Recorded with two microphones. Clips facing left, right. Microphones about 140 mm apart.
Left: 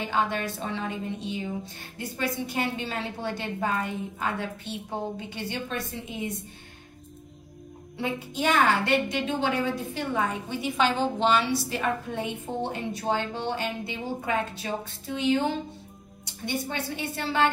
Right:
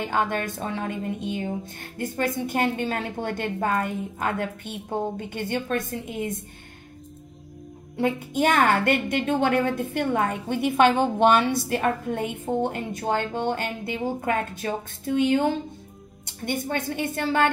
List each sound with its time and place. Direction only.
0.0 s a woman's voice: 50° right (ahead or behind)
8.0 s a woman's voice: 50° right (ahead or behind)